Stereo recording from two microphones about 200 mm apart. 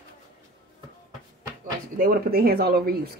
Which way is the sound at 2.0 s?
50° right (ahead or behind).